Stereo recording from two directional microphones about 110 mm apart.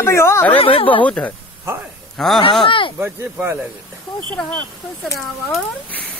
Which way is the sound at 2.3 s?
50° left (ahead or behind).